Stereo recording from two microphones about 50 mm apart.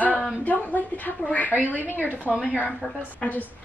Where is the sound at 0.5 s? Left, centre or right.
Left.